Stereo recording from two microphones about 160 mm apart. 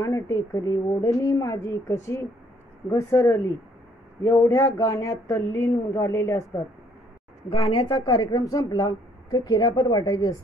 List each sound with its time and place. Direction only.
0.0 s speech: 15° left (ahead or behind)
7.4 s speech: 35° left (ahead or behind)